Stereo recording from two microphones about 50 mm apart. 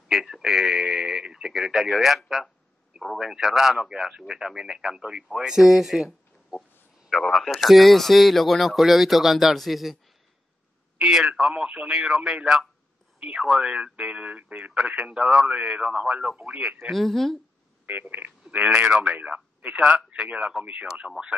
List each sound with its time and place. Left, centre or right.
0.1 s radio: centre
1.2 s a man's voice: centre
11.0 s speech: centre
11.6 s speech: right
11.9 s speech: centre
13.9 s speech: right
14.8 s speech: centre
16.9 s a man's voice: centre
17.8 s speech: right